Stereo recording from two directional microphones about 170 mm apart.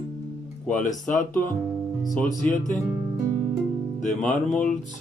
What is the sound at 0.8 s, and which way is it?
Speech, 50° left (ahead or behind).